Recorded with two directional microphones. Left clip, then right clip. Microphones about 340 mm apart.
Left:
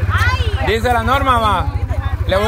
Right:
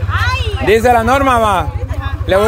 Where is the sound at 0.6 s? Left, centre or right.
Centre.